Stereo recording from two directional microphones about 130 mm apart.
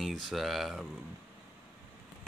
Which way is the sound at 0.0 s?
Centre (ahead or behind).